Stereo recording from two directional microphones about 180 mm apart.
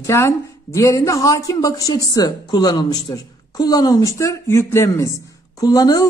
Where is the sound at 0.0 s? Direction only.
15° left (ahead or behind).